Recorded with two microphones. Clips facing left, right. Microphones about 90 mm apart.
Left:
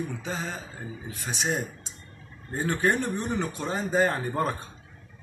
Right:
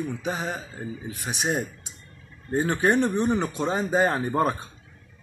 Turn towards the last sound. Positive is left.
turn(degrees=-15)  # may be behind; listen again after turning